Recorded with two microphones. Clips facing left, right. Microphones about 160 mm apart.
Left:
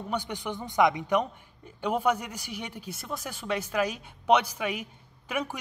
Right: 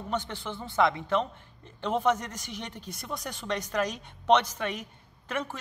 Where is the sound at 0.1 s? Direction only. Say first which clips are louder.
Left 1 dB; 15° left (ahead or behind).